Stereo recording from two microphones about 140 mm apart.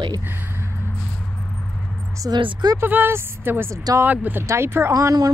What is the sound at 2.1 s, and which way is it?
Speech, 25° right (ahead or behind).